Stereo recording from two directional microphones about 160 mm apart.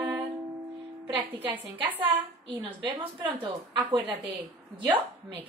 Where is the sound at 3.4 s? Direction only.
30° right (ahead or behind).